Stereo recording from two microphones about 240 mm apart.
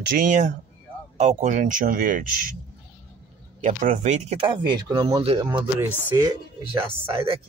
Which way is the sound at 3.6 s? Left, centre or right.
Right.